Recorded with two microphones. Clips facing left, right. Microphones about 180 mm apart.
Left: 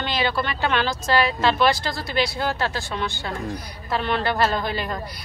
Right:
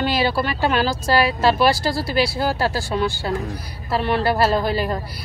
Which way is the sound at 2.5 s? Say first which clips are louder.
Right 5 dB; 35° right (ahead or behind).